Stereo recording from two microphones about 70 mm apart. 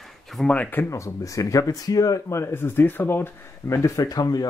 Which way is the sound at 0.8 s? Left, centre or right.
Left.